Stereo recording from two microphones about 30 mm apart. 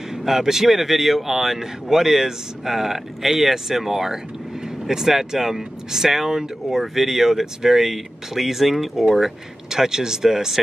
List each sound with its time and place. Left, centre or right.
0.2 s speech: centre